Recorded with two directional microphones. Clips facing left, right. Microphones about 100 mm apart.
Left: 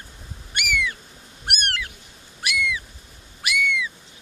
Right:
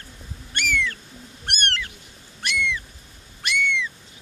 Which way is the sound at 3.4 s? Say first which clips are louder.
Even; 5° left (ahead or behind).